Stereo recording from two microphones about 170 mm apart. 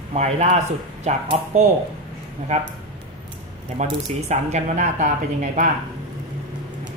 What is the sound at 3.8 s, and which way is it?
Speech, 40° right (ahead or behind).